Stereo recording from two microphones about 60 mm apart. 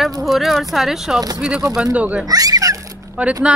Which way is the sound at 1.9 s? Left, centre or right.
Right.